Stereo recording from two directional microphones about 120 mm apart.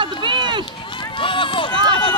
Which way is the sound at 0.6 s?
45° left (ahead or behind).